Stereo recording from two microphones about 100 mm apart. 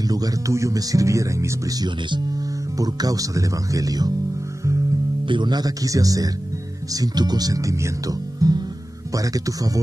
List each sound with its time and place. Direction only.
0.0 s speech: 40° right (ahead or behind)
5.2 s speech: 50° right (ahead or behind)